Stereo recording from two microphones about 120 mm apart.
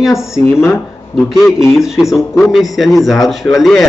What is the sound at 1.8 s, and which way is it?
A man's voice, 5° right (ahead or behind).